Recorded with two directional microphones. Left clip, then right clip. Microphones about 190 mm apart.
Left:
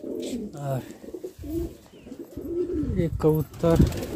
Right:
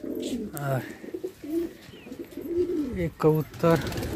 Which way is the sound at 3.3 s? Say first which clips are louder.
Even; 5° left (ahead or behind).